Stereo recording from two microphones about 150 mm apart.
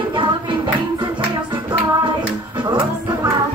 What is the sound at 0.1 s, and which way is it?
Music, 30° right (ahead or behind).